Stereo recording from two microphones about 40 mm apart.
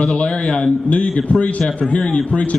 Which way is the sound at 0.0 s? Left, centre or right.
Left.